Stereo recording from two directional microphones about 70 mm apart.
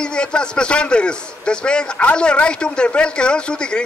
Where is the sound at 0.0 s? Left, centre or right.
Centre.